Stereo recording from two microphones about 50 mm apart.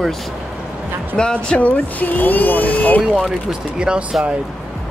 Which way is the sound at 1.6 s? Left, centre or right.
Left.